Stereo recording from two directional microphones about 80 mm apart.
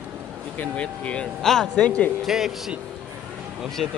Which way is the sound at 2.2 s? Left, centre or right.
Centre.